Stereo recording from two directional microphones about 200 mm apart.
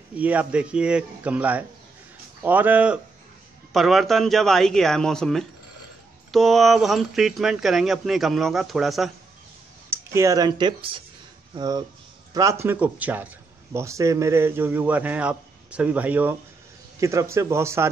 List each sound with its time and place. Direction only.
0.1 s a man's voice: 5° right (ahead or behind)
9.8 s a man's voice: 15° right (ahead or behind)